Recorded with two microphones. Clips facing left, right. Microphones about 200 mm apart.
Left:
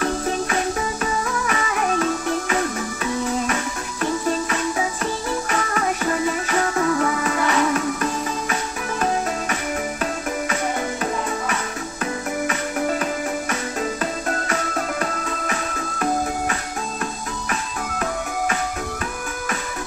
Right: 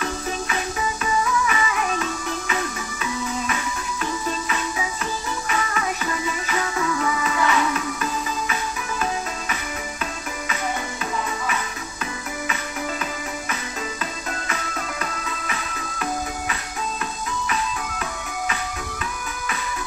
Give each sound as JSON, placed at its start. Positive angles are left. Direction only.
{"t": 1.2, "sound": "music", "side_deg": 50}
{"t": 4.0, "sound": "music", "side_deg": 45}
{"t": 14.5, "sound": "music", "side_deg": 45}